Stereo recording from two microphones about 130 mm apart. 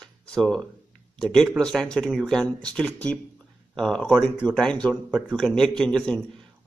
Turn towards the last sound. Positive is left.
turn(degrees=5)  # may be behind; listen again after turning